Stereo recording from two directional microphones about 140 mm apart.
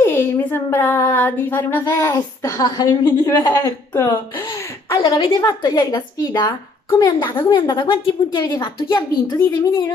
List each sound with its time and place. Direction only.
0.0 s a woman's voice: 15° left (ahead or behind)